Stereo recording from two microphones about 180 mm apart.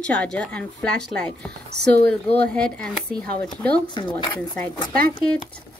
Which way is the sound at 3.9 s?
25° left (ahead or behind).